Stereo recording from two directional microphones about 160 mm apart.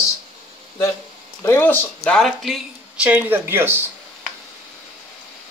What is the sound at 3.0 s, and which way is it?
Speech, 10° right (ahead or behind).